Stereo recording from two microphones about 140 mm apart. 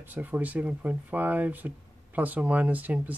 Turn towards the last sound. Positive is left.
turn(degrees=-10)  # may be behind; listen again after turning